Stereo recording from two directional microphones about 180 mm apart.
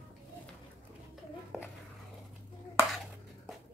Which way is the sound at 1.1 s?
5° right (ahead or behind).